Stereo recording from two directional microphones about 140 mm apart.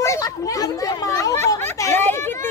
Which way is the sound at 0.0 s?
25° left (ahead or behind).